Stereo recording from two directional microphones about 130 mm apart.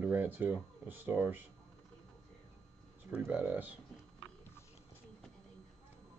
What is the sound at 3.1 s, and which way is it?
Speech, 10° right (ahead or behind).